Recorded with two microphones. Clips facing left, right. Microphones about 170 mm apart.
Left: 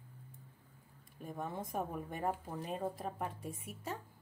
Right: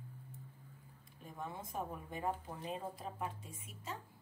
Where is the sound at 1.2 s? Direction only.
50° left (ahead or behind).